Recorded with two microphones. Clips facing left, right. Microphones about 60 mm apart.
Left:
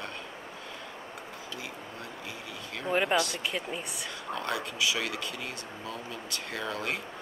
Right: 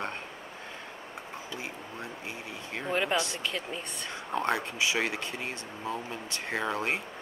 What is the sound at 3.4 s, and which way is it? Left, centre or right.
Speech, centre.